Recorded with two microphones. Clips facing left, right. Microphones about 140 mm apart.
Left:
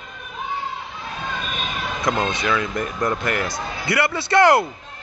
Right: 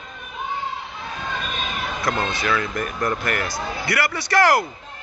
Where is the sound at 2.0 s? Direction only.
20° left (ahead or behind).